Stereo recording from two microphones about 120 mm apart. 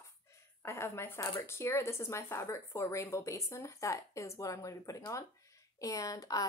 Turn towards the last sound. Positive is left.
turn(degrees=30)  # may be behind; listen again after turning